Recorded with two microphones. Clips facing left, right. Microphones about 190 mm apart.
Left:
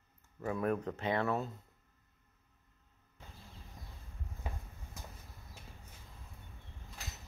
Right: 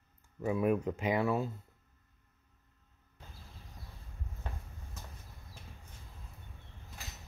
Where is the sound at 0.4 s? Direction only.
10° right (ahead or behind).